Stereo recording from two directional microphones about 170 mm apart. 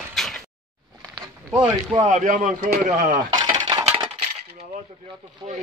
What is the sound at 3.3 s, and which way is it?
Coin, 25° right (ahead or behind).